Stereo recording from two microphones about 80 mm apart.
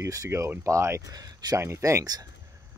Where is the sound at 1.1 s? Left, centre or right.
Right.